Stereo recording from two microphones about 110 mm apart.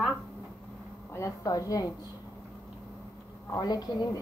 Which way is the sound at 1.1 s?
30° left (ahead or behind).